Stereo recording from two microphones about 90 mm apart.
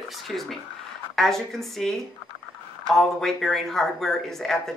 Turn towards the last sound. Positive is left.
turn(degrees=5)  # may be behind; listen again after turning